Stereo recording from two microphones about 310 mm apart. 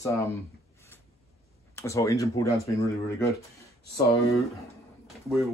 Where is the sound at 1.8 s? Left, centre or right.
Centre.